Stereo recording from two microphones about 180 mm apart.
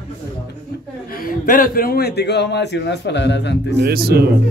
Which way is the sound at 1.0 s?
55° left (ahead or behind).